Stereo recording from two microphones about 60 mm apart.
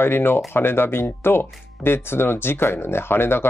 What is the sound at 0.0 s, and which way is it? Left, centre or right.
Speech, left.